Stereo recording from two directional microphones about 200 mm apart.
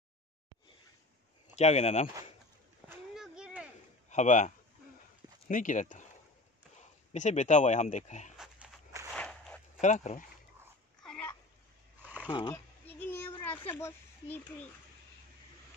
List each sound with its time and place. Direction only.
1.6 s speech: 35° left (ahead or behind)
2.9 s a sound: 5° right (ahead or behind)
4.1 s speech: 35° left (ahead or behind)
8.4 s walk: 5° right (ahead or behind)
9.8 s speech: 35° left (ahead or behind)
11.0 s a sound: 5° left (ahead or behind)
12.3 s speech: 20° left (ahead or behind)
12.8 s a sound: 10° left (ahead or behind)
13.7 s a child's voice: 10° left (ahead or behind)